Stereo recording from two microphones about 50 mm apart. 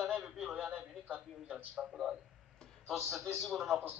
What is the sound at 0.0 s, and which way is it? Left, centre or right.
Radio, centre.